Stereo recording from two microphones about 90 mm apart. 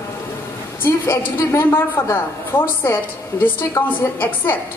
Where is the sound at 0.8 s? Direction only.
25° left (ahead or behind).